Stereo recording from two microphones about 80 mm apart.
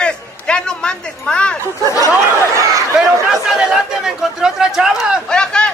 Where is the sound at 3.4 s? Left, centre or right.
Centre.